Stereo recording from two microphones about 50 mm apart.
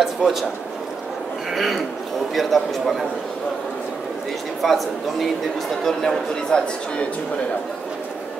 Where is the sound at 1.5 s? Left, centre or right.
Centre.